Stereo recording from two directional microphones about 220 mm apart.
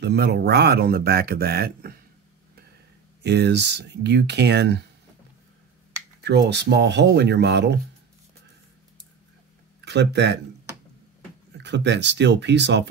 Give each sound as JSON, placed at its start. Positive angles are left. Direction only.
{"t": 0.0, "sound": "speech", "side_deg": -50}
{"t": 3.2, "sound": "speech", "side_deg": -50}
{"t": 6.2, "sound": "speech", "side_deg": -50}
{"t": 9.8, "sound": "speech", "side_deg": -50}
{"t": 11.5, "sound": "speech", "side_deg": -50}